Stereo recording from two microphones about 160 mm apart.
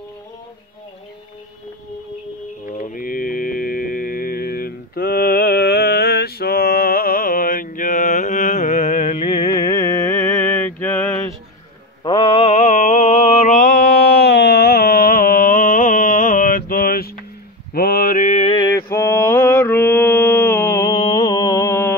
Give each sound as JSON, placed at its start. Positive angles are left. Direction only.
{"t": 2.8, "sound": "mantra", "side_deg": 60}
{"t": 12.0, "sound": "mantra", "side_deg": 30}
{"t": 18.6, "sound": "mantra", "side_deg": 15}